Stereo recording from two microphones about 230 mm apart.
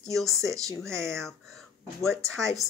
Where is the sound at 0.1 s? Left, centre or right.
Centre.